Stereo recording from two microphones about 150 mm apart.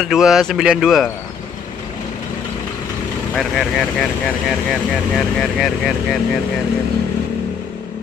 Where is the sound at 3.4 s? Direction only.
Centre (ahead or behind).